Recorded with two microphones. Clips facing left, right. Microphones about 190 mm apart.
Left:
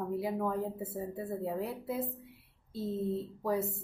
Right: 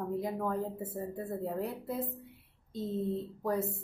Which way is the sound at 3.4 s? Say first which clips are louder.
Even; 5° left (ahead or behind).